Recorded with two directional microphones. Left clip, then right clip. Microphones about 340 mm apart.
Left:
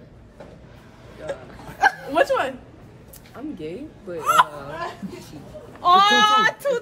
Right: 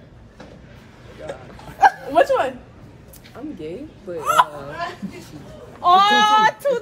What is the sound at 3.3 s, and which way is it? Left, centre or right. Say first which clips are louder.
A woman's voice: right 1 dB; centre.